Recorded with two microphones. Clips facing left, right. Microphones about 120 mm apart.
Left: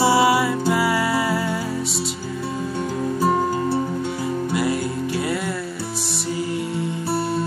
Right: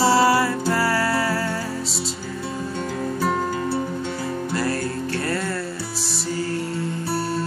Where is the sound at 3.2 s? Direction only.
15° left (ahead or behind).